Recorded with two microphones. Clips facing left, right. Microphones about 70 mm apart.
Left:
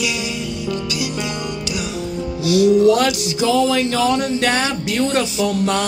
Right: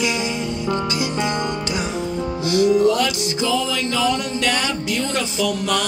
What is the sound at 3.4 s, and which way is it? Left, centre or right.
Music, left.